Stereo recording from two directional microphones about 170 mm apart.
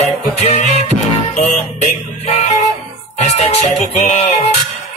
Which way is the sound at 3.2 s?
40° left (ahead or behind).